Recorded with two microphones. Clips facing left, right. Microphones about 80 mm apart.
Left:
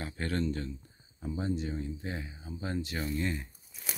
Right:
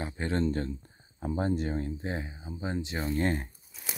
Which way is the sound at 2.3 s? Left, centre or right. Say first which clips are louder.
Right 2 dB; centre.